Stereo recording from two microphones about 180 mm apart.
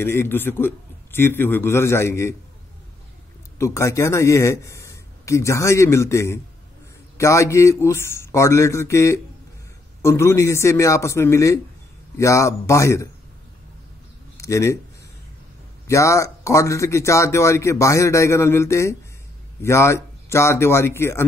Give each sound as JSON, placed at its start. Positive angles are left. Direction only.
{"t": 0.0, "sound": "speech", "side_deg": 15}
{"t": 3.5, "sound": "speech", "side_deg": 15}
{"t": 14.3, "sound": "speech", "side_deg": 15}
{"t": 15.9, "sound": "speech", "side_deg": 15}